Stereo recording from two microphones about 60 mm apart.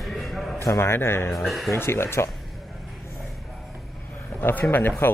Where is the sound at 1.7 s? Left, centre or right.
Left.